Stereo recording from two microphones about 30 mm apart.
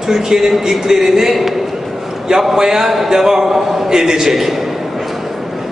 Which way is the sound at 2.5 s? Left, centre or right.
Centre.